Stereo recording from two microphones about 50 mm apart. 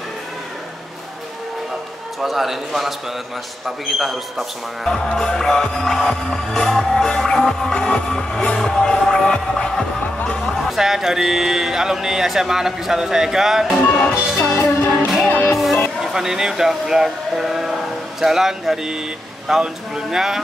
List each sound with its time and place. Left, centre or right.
2.1 s speech: centre
4.8 s music: centre
10.7 s speech: centre
13.7 s music: left
14.5 s music: left
15.2 s music: left
15.5 s music: centre
16.0 s speech: centre